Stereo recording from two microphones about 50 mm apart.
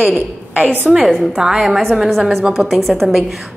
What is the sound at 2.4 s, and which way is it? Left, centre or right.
Speech, centre.